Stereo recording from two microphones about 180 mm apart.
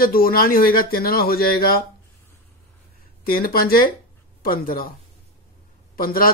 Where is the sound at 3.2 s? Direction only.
55° left (ahead or behind).